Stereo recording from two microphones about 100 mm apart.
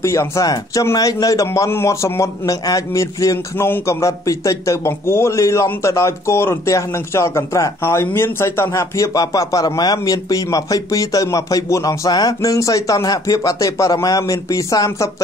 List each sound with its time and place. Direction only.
0.0 s a man's voice: 30° left (ahead or behind)